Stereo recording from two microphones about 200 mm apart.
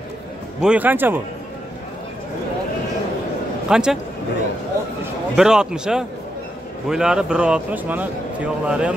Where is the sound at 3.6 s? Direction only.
5° right (ahead or behind).